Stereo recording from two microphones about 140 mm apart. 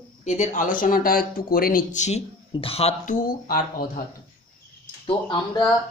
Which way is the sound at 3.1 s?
85° left.